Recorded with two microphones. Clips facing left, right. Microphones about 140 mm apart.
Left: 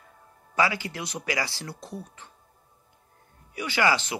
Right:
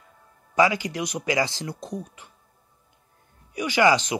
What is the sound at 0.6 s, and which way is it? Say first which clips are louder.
Speech: right 5 dB; 15° right (ahead or behind).